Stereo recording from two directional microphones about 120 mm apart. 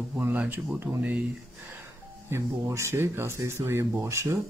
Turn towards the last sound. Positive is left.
turn(degrees=-25)  # may be behind; listen again after turning